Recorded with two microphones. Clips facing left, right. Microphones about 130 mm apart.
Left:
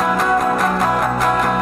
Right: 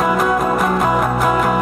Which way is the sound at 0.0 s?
5° right (ahead or behind).